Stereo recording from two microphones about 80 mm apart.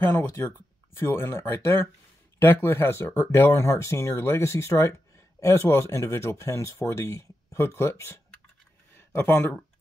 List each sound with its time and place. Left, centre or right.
0.0 s speech: left
3.5 s speech: left